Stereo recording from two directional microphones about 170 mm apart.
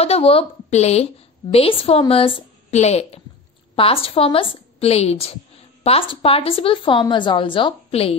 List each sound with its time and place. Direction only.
0.0 s a woman's voice: 35° left (ahead or behind)